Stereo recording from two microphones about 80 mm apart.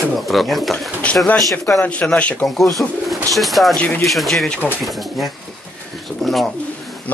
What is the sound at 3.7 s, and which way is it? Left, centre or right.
Speech, centre.